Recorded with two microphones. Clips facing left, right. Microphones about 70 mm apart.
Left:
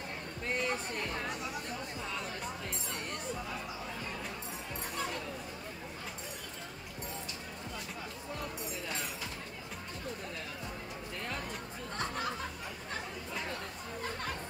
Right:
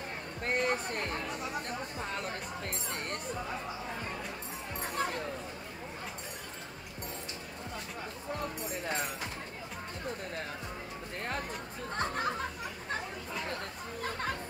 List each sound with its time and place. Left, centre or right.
0.4 s speech: right
4.9 s speech: right
8.8 s speech: right
11.9 s speech: right